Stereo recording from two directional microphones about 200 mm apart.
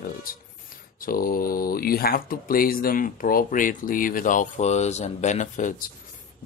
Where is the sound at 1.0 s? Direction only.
45° left (ahead or behind).